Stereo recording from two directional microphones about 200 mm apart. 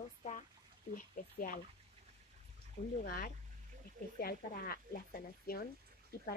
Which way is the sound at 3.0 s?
45° left (ahead or behind).